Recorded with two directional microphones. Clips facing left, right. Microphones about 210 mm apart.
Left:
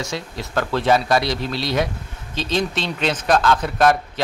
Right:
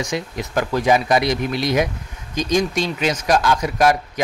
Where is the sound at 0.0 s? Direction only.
15° right (ahead or behind).